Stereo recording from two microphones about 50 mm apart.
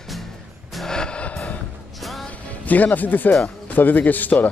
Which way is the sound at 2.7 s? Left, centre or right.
Left.